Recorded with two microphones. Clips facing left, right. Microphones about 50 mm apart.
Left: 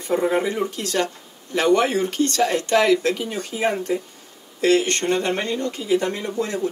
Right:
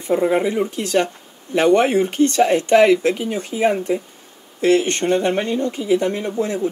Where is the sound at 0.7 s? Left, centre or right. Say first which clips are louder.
Right 4 dB; right.